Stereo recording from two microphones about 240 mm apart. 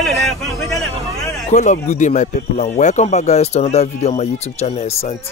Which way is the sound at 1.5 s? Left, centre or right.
Left.